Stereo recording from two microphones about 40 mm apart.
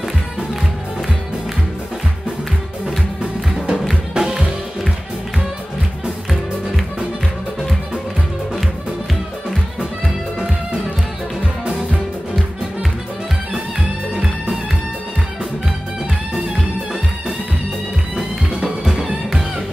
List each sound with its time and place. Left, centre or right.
4.1 s music: centre
13.5 s music: centre
18.1 s music: centre